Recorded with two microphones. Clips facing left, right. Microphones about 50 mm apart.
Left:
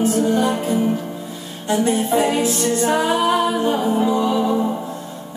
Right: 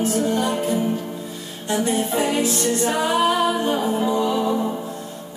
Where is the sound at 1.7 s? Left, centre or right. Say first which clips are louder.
Left 4 dB; left.